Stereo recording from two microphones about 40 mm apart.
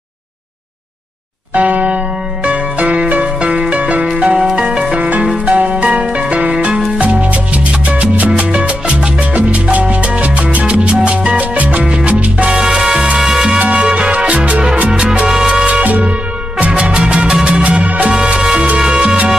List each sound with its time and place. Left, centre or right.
1.5 s church bell: right
2.4 s music: right
4.2 s music: centre
4.6 s music: right
6.5 s music: right
9.3 s salsa music: right
11.0 s music: right
11.3 s salsa music: right; by 13.6 s centre
13.7 s music: right
14.9 s music: centre
15.6 s music: right
17.6 s music: right
18.1 s music: right